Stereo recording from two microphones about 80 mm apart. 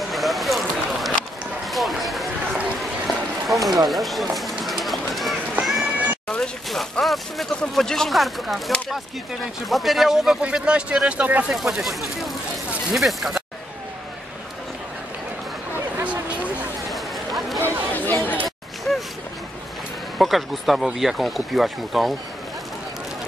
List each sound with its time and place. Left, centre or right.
0.1 s vehicle: centre
1.7 s run: centre
3.4 s a sound: centre
3.9 s run: centre
6.2 s speech: centre
11.5 s speech: centre
16.0 s a sound: centre
16.9 s run: centre
17.6 s chatter: left
20.2 s speech: centre